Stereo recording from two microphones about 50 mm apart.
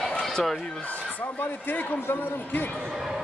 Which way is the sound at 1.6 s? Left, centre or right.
Left.